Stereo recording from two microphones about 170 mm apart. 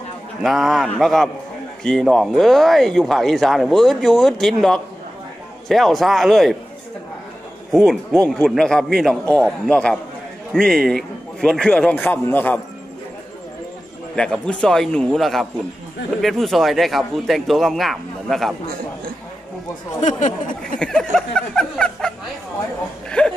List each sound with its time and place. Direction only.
0.4 s speech: centre (ahead or behind)
7.7 s speech: centre (ahead or behind)
14.1 s speech: 5° left (ahead or behind)
20.0 s speech: 45° left (ahead or behind)
20.8 s speech: centre (ahead or behind)
23.0 s a sound: 5° left (ahead or behind)